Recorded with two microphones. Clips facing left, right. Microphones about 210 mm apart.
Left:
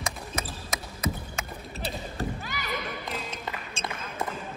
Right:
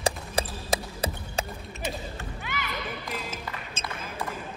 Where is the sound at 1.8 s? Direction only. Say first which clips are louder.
Left 2 dB; 35° left (ahead or behind).